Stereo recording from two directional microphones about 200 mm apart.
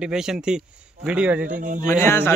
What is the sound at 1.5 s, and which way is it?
Speech, 40° right (ahead or behind).